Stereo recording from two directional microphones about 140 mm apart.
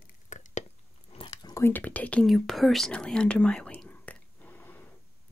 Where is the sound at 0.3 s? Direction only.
65° left (ahead or behind).